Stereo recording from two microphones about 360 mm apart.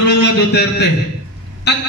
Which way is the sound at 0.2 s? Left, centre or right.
Left.